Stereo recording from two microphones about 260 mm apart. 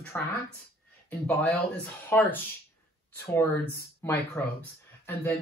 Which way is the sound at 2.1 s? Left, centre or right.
Centre.